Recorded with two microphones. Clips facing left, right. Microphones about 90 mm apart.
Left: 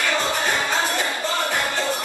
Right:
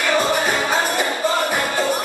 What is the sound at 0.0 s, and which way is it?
Music, 15° right (ahead or behind).